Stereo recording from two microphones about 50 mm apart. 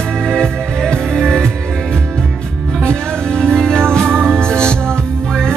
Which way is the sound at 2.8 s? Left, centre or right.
Centre.